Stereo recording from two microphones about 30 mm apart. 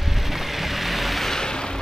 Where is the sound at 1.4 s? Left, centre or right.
Left.